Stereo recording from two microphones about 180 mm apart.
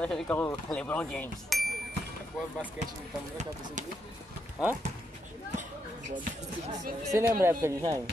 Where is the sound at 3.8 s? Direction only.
45° right (ahead or behind).